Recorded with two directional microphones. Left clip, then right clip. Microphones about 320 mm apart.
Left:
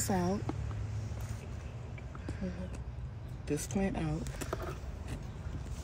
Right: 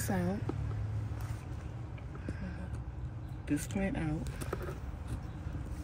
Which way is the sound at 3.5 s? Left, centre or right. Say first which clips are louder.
Left 1 dB; left.